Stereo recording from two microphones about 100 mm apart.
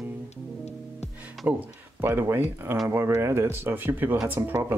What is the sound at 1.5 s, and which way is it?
Speech, 20° right (ahead or behind).